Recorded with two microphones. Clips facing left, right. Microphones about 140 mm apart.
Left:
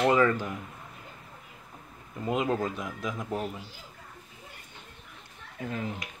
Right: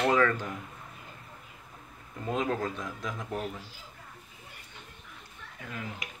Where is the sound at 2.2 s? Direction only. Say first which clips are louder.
Left 2 dB; 10° left (ahead or behind).